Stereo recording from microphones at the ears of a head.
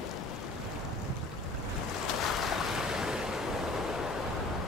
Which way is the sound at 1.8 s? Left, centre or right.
Left.